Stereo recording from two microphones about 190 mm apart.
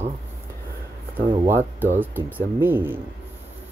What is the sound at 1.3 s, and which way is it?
Speech, 10° right (ahead or behind).